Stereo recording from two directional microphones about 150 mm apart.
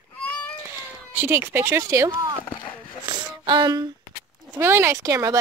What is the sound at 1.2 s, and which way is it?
Speech, 15° right (ahead or behind).